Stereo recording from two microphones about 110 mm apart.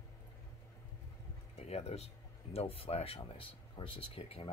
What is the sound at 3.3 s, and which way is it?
Speech, 50° left (ahead or behind).